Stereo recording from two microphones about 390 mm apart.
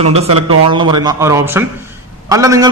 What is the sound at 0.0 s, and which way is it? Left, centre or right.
A man's voice, centre.